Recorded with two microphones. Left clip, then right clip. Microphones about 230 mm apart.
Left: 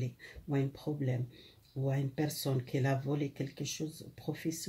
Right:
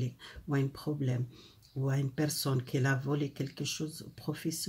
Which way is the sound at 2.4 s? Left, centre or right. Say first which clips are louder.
Right 2 dB; right.